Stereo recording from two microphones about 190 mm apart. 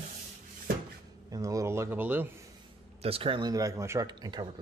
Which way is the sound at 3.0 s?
30° right (ahead or behind).